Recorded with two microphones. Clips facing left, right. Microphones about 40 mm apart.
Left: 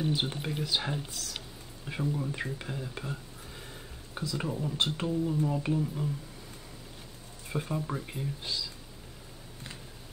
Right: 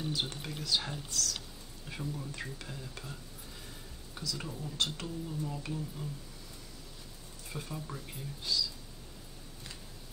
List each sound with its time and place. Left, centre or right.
0.0 s speech: left
7.4 s speech: left